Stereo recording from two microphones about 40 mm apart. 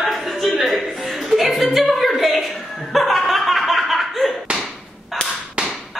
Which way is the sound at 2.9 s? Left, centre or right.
Centre.